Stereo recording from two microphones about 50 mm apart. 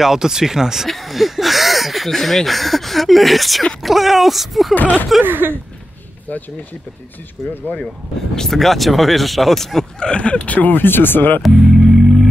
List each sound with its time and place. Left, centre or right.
0.0 s speech: centre
0.8 s speech: centre
4.7 s speech: left
5.2 s speech: right
7.4 s speech: centre
9.9 s speech: centre; by 11.4 s left
11.4 s organ: centre